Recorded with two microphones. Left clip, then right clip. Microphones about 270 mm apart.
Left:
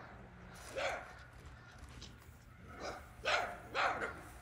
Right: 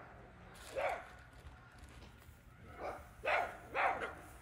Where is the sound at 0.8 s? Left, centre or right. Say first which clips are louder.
Right 1 dB; right.